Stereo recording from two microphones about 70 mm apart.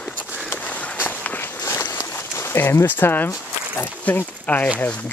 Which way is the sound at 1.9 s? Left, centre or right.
Left.